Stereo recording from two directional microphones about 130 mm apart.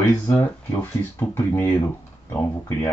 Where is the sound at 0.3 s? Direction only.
20° left (ahead or behind).